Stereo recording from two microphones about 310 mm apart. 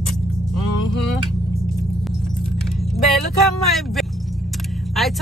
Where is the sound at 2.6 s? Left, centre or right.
Centre.